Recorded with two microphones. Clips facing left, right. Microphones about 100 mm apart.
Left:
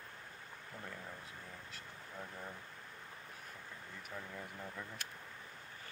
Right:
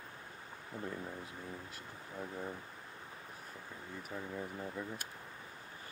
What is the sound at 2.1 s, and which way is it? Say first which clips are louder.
Speech: right 6 dB; 15° right (ahead or behind).